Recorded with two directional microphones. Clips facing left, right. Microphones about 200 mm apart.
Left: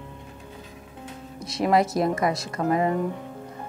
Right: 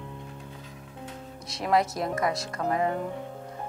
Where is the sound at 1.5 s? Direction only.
10° left (ahead or behind).